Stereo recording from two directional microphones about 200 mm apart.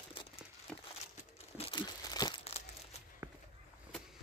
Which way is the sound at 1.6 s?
25° left (ahead or behind).